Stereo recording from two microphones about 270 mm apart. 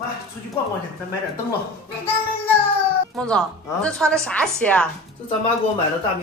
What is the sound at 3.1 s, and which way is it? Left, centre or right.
A woman's voice, centre.